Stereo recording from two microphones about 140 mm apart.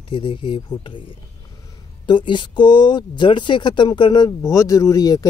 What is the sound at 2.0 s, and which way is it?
Speech, 35° left (ahead or behind).